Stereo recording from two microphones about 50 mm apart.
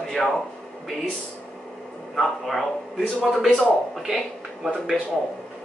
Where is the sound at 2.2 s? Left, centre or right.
Centre.